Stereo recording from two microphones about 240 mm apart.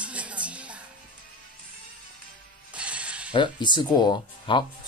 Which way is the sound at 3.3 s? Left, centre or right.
Centre.